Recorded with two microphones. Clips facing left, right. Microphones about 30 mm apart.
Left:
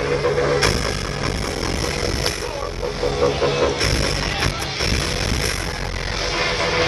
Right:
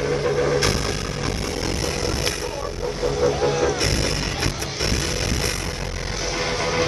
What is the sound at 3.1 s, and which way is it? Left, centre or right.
Music, left.